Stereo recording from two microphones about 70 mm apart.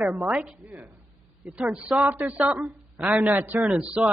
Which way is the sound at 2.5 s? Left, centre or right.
Centre.